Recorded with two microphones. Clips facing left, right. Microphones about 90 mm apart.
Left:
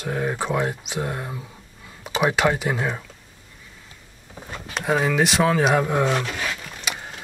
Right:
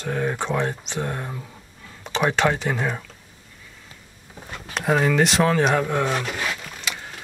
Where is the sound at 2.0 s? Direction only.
5° left (ahead or behind).